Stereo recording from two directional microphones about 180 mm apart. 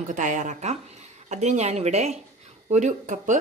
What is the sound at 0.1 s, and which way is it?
A woman's voice, 45° right (ahead or behind).